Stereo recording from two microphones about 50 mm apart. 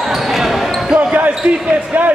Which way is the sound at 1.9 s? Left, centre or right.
Right.